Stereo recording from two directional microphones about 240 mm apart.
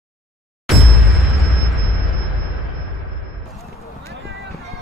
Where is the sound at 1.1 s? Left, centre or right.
Centre.